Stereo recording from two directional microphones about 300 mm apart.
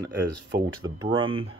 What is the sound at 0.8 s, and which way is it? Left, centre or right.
Speech, centre.